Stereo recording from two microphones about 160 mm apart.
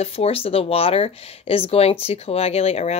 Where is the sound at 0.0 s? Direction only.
40° left (ahead or behind).